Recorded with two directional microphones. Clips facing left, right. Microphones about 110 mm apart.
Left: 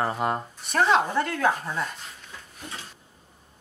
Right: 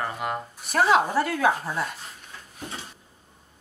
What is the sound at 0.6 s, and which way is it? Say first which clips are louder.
Speech: right 1 dB; 5° right (ahead or behind).